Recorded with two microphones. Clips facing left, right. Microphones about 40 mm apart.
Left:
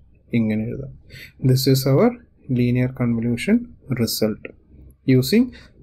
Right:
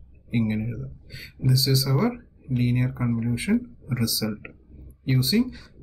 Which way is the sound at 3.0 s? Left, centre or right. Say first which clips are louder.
Left 5 dB; left.